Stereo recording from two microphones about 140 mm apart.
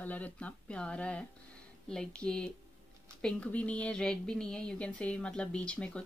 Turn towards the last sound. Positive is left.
turn(degrees=5)  # may be behind; listen again after turning